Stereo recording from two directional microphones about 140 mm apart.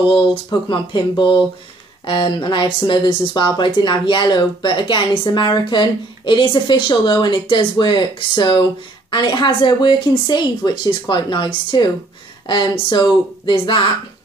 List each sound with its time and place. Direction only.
0.5 s speech: 35° left (ahead or behind)